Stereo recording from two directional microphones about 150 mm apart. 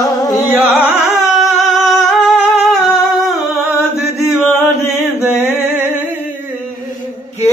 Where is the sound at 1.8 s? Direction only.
Centre (ahead or behind).